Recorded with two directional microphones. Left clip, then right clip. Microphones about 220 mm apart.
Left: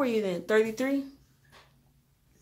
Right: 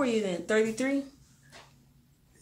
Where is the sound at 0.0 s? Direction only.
35° left (ahead or behind).